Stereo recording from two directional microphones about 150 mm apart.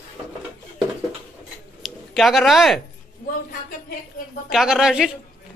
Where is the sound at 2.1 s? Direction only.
Centre (ahead or behind).